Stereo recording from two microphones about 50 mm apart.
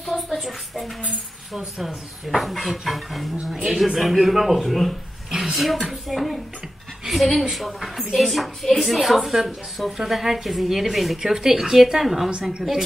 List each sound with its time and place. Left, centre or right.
0.0 s a woman's voice: centre
7.5 s a woman's voice: centre